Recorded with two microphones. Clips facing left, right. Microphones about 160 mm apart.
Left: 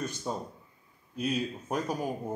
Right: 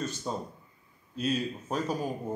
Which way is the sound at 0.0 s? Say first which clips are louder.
Even; 15° left (ahead or behind).